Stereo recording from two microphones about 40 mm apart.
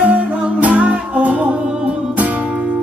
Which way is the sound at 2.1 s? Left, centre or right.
Right.